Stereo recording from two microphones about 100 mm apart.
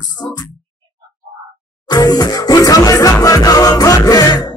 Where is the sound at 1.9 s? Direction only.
40° left (ahead or behind).